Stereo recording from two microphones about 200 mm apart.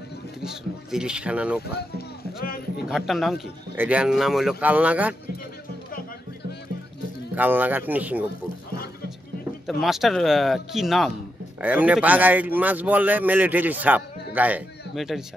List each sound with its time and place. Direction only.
0.4 s a man's voice: 5° right (ahead or behind)
1.6 s speech: 50° left (ahead or behind)
2.8 s a man's voice: centre (ahead or behind)
7.3 s a man's voice: 10° right (ahead or behind)
9.7 s a man's voice: centre (ahead or behind)